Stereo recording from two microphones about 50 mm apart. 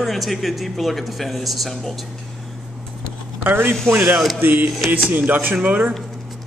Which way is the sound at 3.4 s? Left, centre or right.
Right.